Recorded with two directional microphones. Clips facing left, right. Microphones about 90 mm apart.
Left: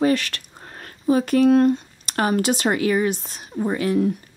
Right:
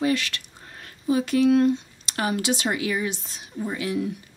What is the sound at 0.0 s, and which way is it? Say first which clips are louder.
Speech: left 4 dB; 45° left (ahead or behind).